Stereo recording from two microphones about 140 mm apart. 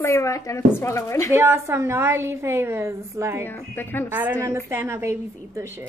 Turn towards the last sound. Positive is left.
turn(degrees=-20)  # may be behind; listen again after turning